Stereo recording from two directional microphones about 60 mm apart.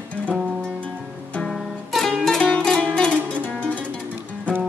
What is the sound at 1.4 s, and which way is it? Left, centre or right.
Music, centre.